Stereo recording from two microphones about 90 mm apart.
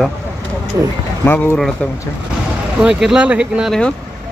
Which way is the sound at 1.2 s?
25° left (ahead or behind).